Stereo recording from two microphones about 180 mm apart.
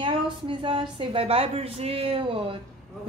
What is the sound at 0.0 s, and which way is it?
A woman's voice, 25° right (ahead or behind).